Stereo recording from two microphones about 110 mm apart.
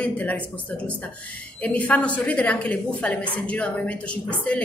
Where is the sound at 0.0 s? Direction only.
15° left (ahead or behind).